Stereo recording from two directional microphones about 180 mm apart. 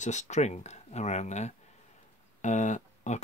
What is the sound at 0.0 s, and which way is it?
Speech, 40° left (ahead or behind).